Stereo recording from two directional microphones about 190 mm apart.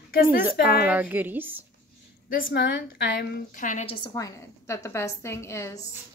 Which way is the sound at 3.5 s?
45° left (ahead or behind).